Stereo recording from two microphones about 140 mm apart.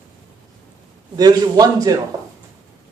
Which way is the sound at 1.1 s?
30° right (ahead or behind).